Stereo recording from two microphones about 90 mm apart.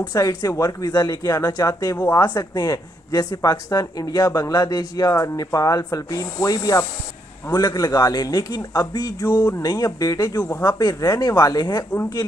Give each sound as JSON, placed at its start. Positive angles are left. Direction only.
{"t": 0.0, "sound": "speech", "side_deg": 45}